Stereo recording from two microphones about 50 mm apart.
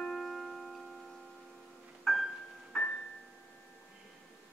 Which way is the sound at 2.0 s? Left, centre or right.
Centre.